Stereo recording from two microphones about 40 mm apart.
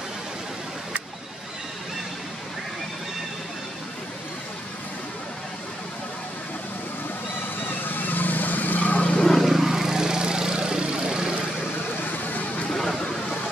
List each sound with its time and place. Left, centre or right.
7.6 s vehicle: left
9.2 s vehicle: centre
9.5 s vehicle: centre
12.0 s vehicle: left